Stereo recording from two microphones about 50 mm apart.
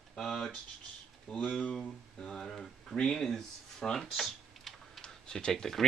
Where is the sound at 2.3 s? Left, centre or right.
Centre.